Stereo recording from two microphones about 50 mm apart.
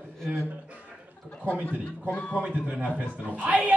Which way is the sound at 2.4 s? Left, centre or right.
Right.